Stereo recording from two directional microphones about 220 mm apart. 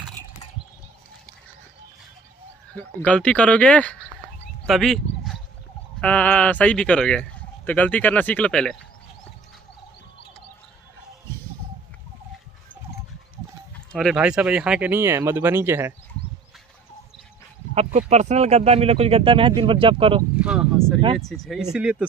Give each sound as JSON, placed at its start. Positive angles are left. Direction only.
{"t": 2.7, "sound": "speech", "side_deg": 5}
{"t": 13.9, "sound": "speech", "side_deg": 0}
{"t": 17.7, "sound": "speech", "side_deg": -30}
{"t": 20.3, "sound": "speech", "side_deg": -5}